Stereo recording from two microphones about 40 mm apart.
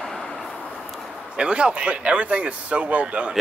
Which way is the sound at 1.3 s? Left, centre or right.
Right.